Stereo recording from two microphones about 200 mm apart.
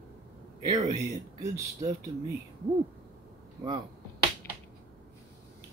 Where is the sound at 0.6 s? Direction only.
20° right (ahead or behind).